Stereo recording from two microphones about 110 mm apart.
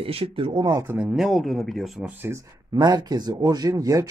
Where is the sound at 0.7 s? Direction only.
25° right (ahead or behind).